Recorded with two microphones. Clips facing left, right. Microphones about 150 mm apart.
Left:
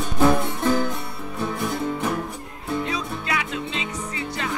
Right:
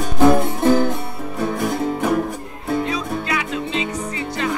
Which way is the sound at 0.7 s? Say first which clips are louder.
Right 6 dB; 40° right (ahead or behind).